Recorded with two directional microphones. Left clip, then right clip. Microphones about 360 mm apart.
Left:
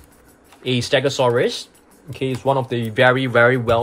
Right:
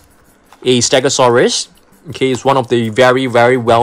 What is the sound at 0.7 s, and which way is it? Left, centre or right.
Speech, centre.